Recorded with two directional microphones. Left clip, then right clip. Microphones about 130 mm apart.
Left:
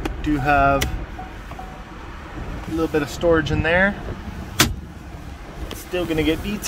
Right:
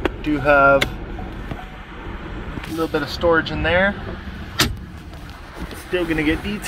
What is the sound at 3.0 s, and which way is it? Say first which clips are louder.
Speech: right 1 dB; 85° left.